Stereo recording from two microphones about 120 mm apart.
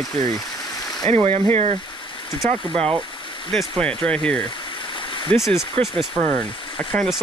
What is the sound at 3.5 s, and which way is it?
Speech, 5° left (ahead or behind).